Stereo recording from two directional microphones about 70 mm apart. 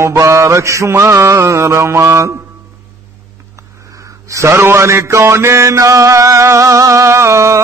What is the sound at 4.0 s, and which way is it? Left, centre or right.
A man's voice, right.